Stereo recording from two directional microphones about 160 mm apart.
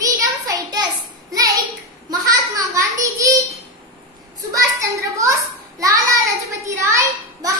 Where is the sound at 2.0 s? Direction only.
20° right (ahead or behind).